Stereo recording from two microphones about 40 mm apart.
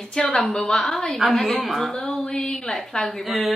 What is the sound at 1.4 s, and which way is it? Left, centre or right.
Speech, centre.